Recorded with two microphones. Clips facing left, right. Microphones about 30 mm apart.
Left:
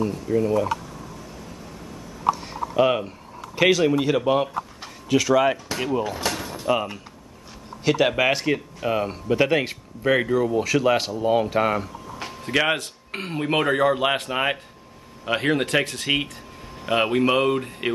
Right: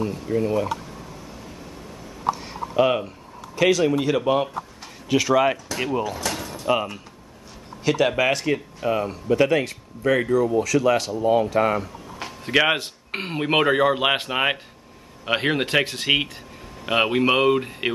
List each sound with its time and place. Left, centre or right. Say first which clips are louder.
0.3 s speech: left 1 dB; right
2.3 s a sound: even; centre
3.5 s speech: even; centre
6.0 s a sound: left 1 dB; centre
6.6 s speech: right 1 dB; centre
7.8 s speech: even; centre
11.1 s speech: right 1 dB; centre
11.6 s a sound: right 1 dB; centre
12.4 s speech: right 2 dB; centre
12.7 s speech: right 2 dB; right